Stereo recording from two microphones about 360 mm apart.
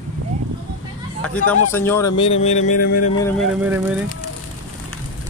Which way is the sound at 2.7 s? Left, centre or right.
Left.